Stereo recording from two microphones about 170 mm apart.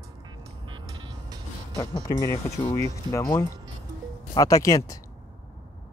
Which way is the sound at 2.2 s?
15° left (ahead or behind).